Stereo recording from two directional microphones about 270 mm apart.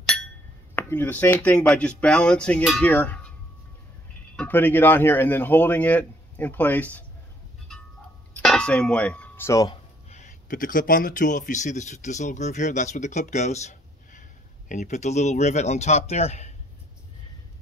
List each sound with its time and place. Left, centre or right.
0.7 s speech: centre
4.4 s a man's voice: centre
8.4 s speech: centre
10.0 s speech: left